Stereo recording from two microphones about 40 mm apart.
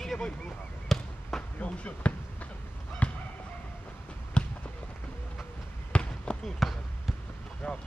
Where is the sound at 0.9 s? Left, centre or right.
Centre.